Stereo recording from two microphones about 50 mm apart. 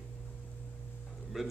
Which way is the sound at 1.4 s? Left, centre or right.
Centre.